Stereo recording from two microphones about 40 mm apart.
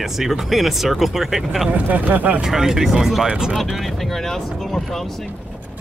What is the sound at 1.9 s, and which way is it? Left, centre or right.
Speech, right.